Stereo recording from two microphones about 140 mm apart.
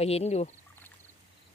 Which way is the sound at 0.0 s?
50° left (ahead or behind).